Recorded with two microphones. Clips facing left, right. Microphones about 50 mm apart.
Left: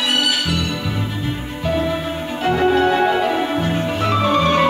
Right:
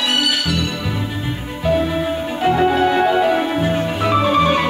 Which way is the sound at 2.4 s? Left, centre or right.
Centre.